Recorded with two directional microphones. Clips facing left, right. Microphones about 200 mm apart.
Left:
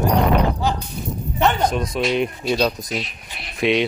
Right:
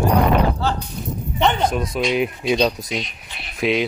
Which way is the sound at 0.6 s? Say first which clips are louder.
Even; 15° left (ahead or behind).